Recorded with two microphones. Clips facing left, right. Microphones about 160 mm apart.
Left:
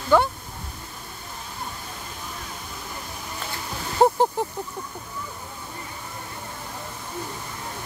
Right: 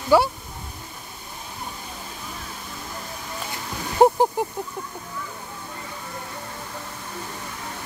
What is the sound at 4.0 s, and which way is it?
Speech, 10° right (ahead or behind).